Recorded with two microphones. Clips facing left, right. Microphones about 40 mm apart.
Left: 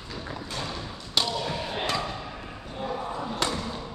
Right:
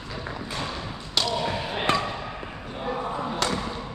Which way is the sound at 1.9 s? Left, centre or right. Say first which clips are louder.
Right 7 dB; right.